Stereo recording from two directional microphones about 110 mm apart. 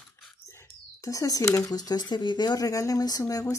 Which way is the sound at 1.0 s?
30° left (ahead or behind).